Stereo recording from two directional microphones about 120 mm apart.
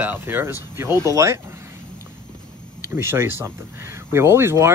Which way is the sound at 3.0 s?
20° right (ahead or behind).